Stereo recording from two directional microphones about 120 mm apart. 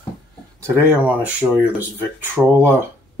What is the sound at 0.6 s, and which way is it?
Speech, 15° right (ahead or behind).